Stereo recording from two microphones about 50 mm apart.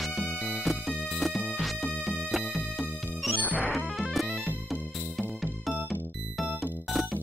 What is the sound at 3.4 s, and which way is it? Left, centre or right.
Music, left.